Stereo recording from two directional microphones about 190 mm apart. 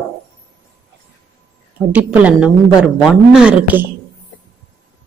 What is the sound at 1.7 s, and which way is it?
A woman's voice, 10° right (ahead or behind).